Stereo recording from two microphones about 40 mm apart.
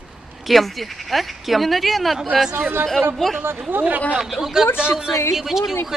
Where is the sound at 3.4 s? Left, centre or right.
Right.